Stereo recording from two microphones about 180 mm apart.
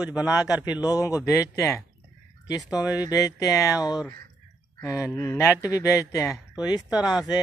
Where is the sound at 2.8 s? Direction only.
20° left (ahead or behind).